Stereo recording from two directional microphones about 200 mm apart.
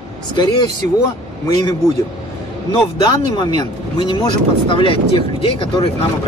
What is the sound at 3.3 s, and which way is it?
Speech, 20° left (ahead or behind).